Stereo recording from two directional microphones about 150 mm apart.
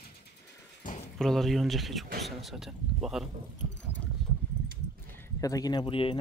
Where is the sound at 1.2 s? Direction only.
Centre (ahead or behind).